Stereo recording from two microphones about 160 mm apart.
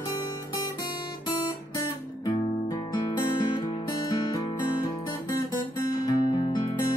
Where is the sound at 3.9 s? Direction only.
25° left (ahead or behind).